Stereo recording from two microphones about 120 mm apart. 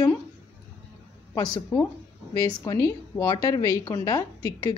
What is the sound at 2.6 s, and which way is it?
A woman's voice, 25° left (ahead or behind).